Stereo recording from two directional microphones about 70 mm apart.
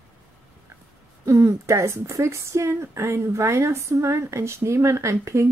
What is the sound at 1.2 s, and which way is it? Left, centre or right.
Speech, right.